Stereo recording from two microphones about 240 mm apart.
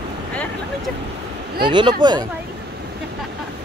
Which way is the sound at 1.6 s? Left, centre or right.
Centre.